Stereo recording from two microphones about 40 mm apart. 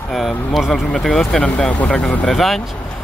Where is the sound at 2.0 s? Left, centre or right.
Centre.